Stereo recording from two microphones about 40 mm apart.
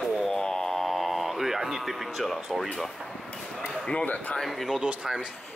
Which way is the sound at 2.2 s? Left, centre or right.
Centre.